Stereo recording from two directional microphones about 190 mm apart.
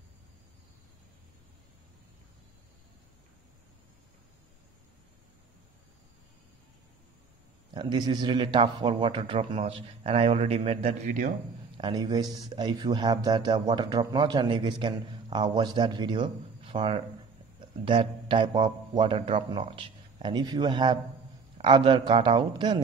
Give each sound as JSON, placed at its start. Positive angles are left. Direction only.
{"t": 7.7, "sound": "a man's voice", "side_deg": -25}